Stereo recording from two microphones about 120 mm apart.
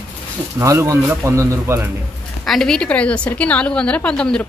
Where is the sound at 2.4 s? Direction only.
5° left (ahead or behind).